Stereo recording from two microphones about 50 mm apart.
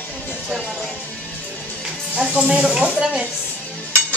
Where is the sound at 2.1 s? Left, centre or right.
Centre.